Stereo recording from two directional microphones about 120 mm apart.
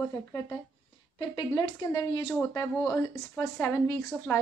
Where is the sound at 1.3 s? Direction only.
30° left (ahead or behind).